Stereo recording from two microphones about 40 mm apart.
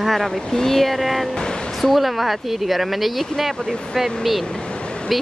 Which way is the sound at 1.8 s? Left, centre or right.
Centre.